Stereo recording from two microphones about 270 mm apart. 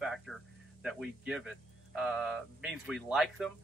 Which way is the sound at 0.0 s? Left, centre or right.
Centre.